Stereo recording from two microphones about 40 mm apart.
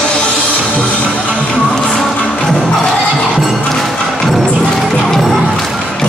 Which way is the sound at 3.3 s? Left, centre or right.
Centre.